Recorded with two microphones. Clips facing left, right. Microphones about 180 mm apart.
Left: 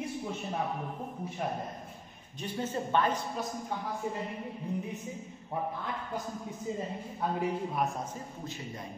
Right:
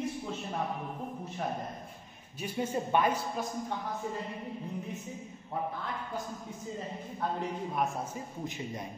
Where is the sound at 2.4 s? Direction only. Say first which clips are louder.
Right 1 dB; 10° right (ahead or behind).